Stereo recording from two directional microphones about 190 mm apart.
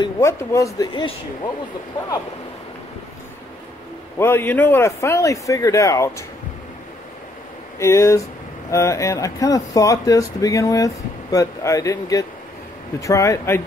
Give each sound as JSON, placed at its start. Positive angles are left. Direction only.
{"t": 0.0, "sound": "speech", "side_deg": 15}
{"t": 4.2, "sound": "speech", "side_deg": 10}
{"t": 7.8, "sound": "speech", "side_deg": 15}